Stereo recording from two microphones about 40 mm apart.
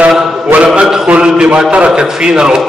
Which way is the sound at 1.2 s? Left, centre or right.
Right.